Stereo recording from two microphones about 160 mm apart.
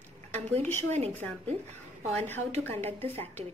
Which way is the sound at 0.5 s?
10° left (ahead or behind).